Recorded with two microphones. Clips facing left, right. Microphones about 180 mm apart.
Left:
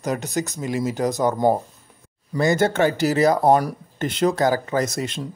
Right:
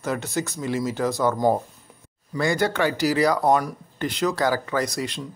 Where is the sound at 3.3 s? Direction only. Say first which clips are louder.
Left 3 dB; 30° left (ahead or behind).